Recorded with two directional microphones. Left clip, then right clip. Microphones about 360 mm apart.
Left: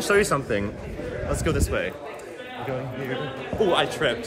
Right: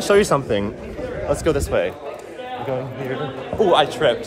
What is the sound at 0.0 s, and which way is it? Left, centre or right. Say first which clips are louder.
A man's voice: right 5 dB; centre.